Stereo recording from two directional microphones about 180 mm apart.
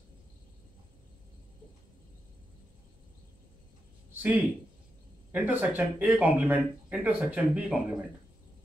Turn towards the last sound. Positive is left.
turn(degrees=-5)  # may be behind; listen again after turning